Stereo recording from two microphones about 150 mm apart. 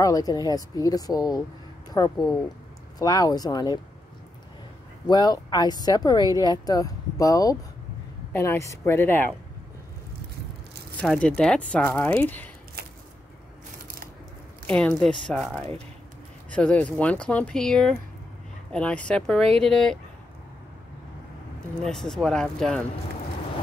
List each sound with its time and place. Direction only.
0.0 s speech: 25° left (ahead or behind)
5.0 s speech: 25° left (ahead or behind)
11.0 s speech: 5° left (ahead or behind)
14.7 s speech: 5° left (ahead or behind)
21.8 s speech: 5° left (ahead or behind)